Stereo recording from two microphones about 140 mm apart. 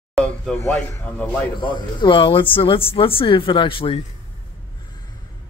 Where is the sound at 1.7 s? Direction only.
35° left (ahead or behind).